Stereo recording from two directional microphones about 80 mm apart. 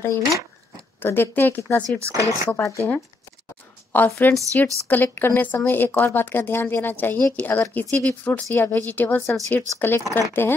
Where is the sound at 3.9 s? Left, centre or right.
Left.